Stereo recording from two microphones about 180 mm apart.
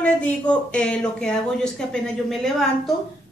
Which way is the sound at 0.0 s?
5° left (ahead or behind).